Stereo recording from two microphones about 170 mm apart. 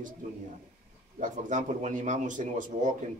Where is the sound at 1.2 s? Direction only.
45° right (ahead or behind).